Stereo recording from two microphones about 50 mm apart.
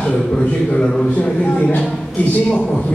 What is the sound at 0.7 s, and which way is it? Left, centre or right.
Speech, centre.